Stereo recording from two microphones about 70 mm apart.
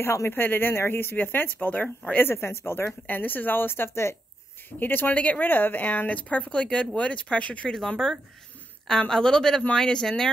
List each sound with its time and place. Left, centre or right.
0.0 s speech: left
2.2 s a woman's voice: left; by 10.3 s centre